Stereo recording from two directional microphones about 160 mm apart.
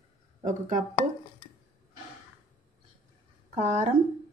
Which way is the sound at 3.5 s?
45° right (ahead or behind).